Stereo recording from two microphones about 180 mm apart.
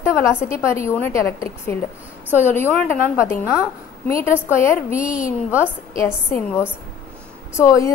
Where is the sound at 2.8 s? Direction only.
15° left (ahead or behind).